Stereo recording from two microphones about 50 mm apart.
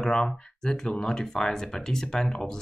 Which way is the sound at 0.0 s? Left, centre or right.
Centre.